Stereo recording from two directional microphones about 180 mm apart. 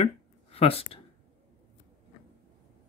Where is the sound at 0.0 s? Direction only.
35° left (ahead or behind).